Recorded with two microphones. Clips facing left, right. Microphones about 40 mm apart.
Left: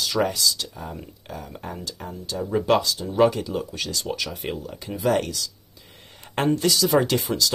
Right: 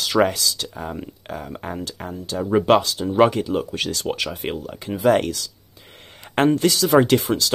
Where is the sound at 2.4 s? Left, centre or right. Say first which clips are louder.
Right 4 dB; right.